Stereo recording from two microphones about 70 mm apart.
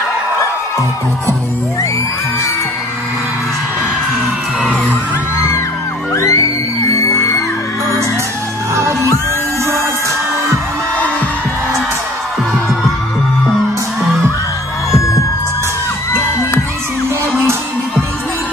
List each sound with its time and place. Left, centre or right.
6.1 s music: left
8.7 s music: right